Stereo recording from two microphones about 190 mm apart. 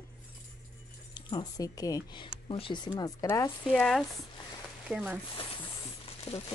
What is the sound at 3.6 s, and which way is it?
A woman's voice, centre (ahead or behind).